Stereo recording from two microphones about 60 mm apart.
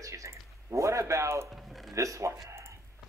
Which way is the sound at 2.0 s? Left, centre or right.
Right.